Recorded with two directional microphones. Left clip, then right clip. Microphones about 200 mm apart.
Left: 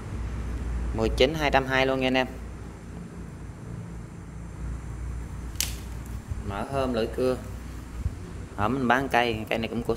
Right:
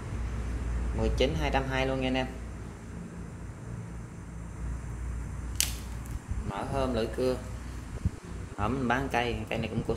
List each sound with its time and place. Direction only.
0.9 s speech: 40° left (ahead or behind)
6.5 s speech: 15° left (ahead or behind)
8.5 s a man's voice: 20° left (ahead or behind)